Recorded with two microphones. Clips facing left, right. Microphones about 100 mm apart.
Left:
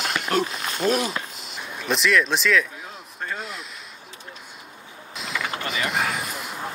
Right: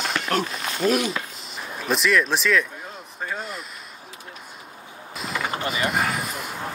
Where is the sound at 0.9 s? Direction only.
35° left (ahead or behind).